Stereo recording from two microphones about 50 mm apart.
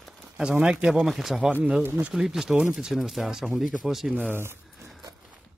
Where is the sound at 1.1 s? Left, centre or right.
Centre.